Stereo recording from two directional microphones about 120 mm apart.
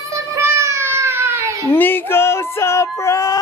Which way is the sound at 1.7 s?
15° left (ahead or behind).